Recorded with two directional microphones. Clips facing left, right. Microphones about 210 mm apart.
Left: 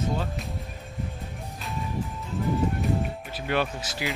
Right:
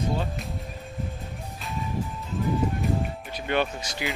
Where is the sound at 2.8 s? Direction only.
Centre (ahead or behind).